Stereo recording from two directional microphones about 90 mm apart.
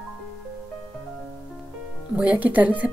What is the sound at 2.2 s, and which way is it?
Speech, 15° right (ahead or behind).